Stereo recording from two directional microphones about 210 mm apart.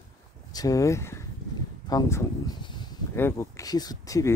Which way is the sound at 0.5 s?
15° left (ahead or behind).